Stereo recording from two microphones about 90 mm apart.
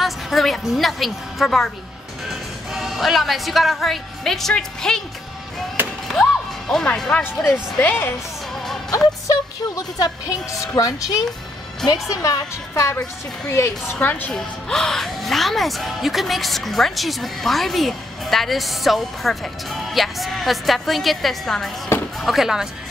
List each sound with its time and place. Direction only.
0.0 s a woman's voice: centre (ahead or behind)
5.8 s music: 20° right (ahead or behind)
6.7 s speech: 5° left (ahead or behind)
7.8 s a woman's voice: 25° left (ahead or behind)
8.9 s speech: 40° left (ahead or behind)
13.5 s a woman's voice: 30° left (ahead or behind)
14.3 s speech: 5° left (ahead or behind)